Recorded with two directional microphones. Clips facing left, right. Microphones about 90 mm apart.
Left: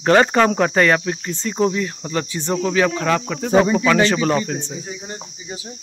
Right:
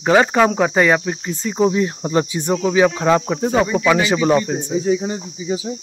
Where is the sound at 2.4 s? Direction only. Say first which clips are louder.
Right 1 dB; 10° right (ahead or behind).